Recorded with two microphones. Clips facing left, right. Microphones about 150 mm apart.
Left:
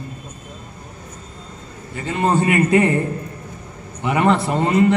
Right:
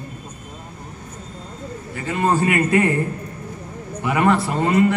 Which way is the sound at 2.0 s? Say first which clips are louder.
Left 1 dB; 20° left (ahead or behind).